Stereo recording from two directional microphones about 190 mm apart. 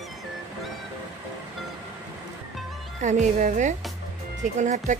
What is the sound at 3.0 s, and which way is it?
A woman's voice, 40° right (ahead or behind).